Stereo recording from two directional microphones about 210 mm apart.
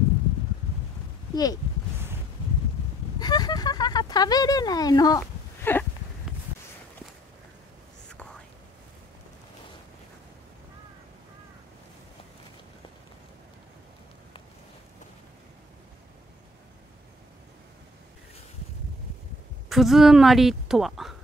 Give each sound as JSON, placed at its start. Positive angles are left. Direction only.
{"t": 1.3, "sound": "speech", "side_deg": 20}
{"t": 3.2, "sound": "a sound", "side_deg": 20}
{"t": 19.7, "sound": "a woman's voice", "side_deg": 0}